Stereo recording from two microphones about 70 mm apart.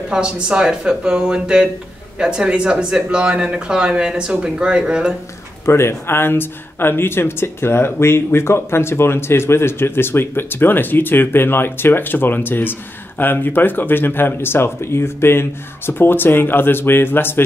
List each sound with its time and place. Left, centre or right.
0.1 s speech: centre
5.7 s speech: left